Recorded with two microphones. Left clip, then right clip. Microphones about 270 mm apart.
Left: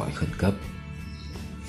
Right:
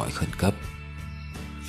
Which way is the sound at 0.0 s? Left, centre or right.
Right.